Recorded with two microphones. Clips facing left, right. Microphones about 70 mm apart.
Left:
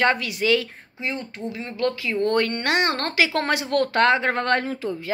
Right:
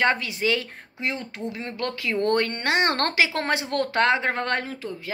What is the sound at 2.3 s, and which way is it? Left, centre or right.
Speech, right.